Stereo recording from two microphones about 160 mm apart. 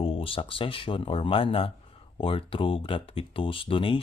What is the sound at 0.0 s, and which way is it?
Speech, 35° left (ahead or behind).